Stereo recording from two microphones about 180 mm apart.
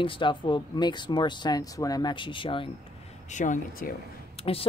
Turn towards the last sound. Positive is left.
turn(degrees=30)  # may be behind; listen again after turning